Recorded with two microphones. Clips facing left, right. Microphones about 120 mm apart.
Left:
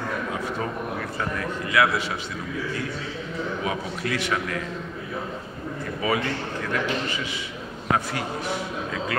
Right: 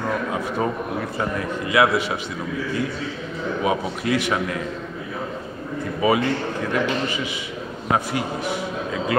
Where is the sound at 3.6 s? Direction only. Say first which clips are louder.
Right 6 dB; 15° right (ahead or behind).